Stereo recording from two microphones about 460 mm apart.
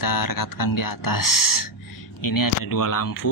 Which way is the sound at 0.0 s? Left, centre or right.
Left.